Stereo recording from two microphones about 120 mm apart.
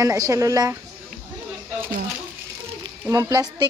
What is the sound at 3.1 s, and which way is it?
Speech, 30° right (ahead or behind).